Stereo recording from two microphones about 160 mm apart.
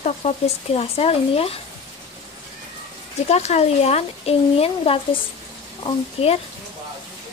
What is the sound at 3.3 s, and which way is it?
Speech, 45° left (ahead or behind).